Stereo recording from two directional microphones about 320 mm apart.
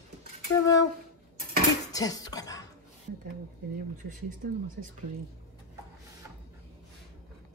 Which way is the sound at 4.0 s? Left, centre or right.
Right.